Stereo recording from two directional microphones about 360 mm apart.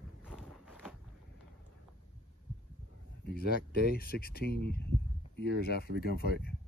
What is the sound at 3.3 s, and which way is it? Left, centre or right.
Speech, left.